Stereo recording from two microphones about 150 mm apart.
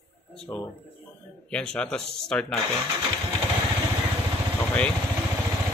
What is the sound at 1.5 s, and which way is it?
Speech, 5° left (ahead or behind).